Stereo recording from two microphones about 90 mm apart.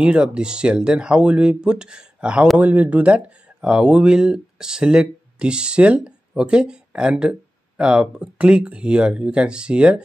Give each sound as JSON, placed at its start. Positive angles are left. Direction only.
{"t": 0.0, "sound": "speech", "side_deg": -10}